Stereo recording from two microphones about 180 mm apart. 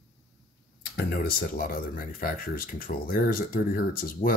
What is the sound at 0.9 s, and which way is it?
Speech, 55° left (ahead or behind).